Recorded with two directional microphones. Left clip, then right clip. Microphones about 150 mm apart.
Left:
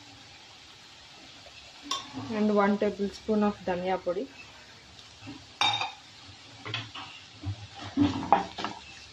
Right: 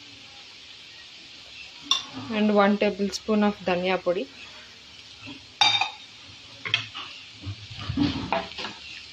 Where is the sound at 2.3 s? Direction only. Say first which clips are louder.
Right 5 dB; 15° right (ahead or behind).